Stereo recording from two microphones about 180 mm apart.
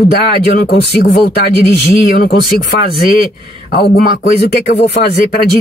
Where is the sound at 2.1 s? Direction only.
55° left (ahead or behind).